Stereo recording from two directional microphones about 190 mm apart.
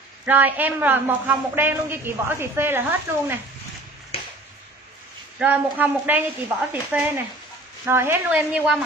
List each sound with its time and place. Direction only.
0.2 s a man's voice: 10° right (ahead or behind)
4.1 s a sound: 30° left (ahead or behind)
5.4 s a man's voice: 10° right (ahead or behind)